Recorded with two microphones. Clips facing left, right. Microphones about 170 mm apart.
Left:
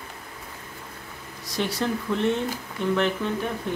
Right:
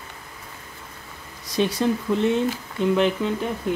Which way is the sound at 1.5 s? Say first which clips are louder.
Right 5 dB; 15° right (ahead or behind).